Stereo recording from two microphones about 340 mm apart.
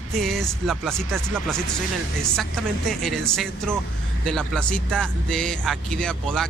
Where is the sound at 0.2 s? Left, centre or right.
Centre.